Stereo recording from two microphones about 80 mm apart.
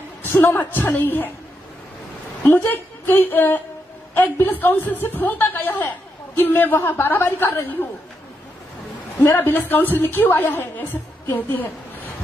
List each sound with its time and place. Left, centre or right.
0.2 s a woman's voice: left
2.4 s a woman's voice: left
9.2 s a woman's voice: left